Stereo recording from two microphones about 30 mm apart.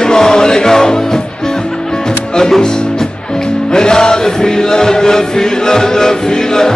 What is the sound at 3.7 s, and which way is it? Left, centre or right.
Music, left.